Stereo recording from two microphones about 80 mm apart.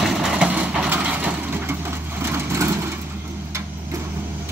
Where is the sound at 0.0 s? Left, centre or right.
Centre; by 1.8 s right.